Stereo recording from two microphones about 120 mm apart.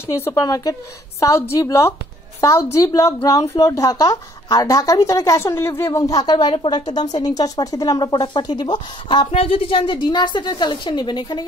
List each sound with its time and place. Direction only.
0.0 s speech: 25° left (ahead or behind)
6.3 s speech: 45° left (ahead or behind)
9.3 s speech: 55° left (ahead or behind); by 11.4 s 35° left (ahead or behind)